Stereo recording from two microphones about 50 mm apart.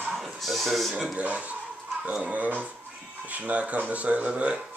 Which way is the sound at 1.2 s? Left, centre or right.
Right.